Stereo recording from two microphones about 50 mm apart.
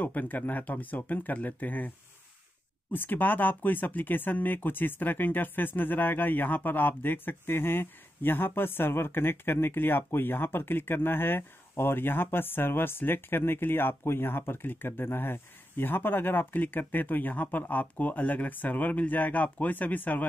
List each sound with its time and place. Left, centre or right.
0.0 s speech: left
2.9 s speech: left